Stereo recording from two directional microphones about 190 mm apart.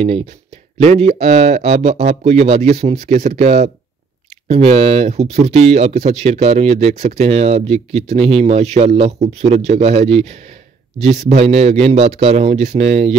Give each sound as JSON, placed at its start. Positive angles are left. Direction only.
{"t": 0.8, "sound": "speech", "side_deg": -35}